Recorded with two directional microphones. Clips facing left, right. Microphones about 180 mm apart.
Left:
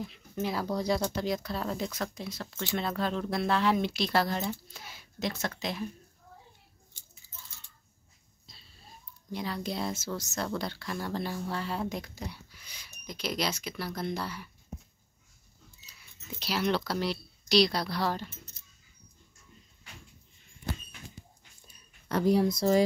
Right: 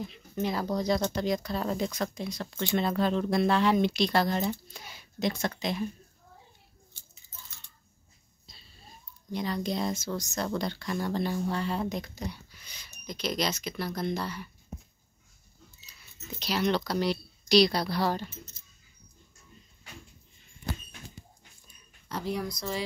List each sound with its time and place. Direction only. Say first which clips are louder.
0.0 s speech: right 2 dB; 5° left (ahead or behind)
8.5 s a sound: right 1 dB; centre (ahead or behind)
9.3 s speech: right 3 dB; 5° left (ahead or behind)
16.3 s speech: right 2 dB; 5° left (ahead or behind)
22.3 s speech: left 8 dB; 30° left (ahead or behind)